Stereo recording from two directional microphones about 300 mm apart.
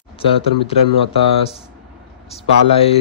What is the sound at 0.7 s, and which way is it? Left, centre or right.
Speech, centre.